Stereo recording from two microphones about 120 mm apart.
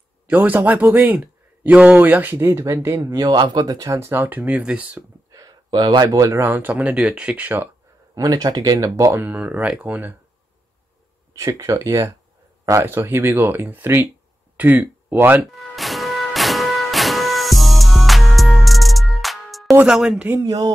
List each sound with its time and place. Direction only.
0.3 s speech: 15° right (ahead or behind)
5.3 s speech: 30° right (ahead or behind)
6.4 s speech: 15° right (ahead or behind)
8.1 s speech: 30° right (ahead or behind); by 10.1 s 15° right (ahead or behind)
11.3 s speech: 25° right (ahead or behind)
15.5 s music: centre (ahead or behind)
19.7 s speech: 15° right (ahead or behind)
20.4 s speech: 35° right (ahead or behind)